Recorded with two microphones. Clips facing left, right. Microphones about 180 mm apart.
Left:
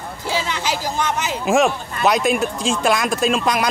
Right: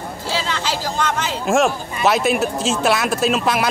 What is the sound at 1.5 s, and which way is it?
Speech, centre (ahead or behind).